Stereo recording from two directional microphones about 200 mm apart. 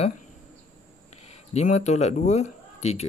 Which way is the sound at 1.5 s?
35° left (ahead or behind).